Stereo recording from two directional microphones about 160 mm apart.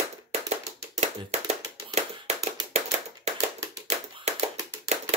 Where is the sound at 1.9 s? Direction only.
45° right (ahead or behind).